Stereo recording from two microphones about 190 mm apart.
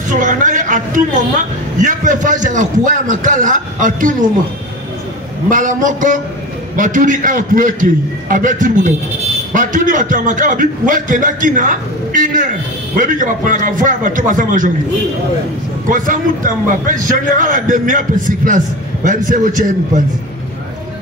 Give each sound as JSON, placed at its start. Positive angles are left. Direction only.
{"t": 0.1, "sound": "a man's voice", "side_deg": -40}
{"t": 5.5, "sound": "a man's voice", "side_deg": -45}
{"t": 15.9, "sound": "a man's voice", "side_deg": -45}